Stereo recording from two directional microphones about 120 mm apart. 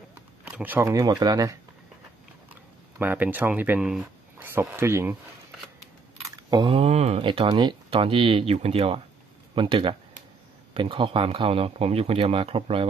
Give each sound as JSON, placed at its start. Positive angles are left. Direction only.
{"t": 0.1, "sound": "a sound", "side_deg": -15}
{"t": 0.8, "sound": "speech", "side_deg": -30}
{"t": 3.0, "sound": "speech", "side_deg": -15}
{"t": 6.5, "sound": "speech", "side_deg": -40}
{"t": 6.8, "sound": "speech", "side_deg": -60}
{"t": 7.2, "sound": "speech", "side_deg": -45}